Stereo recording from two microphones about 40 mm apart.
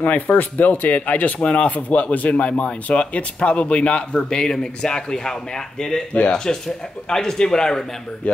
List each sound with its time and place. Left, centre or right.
0.0 s a man's voice: left; by 7.8 s centre